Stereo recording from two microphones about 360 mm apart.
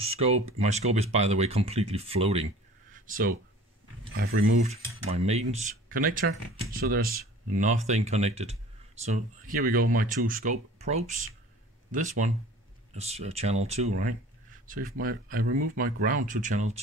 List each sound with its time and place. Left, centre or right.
0.0 s speech: centre
2.9 s a sound: right
4.1 s speech: right